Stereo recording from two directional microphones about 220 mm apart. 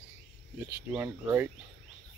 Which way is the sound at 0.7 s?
10° right (ahead or behind).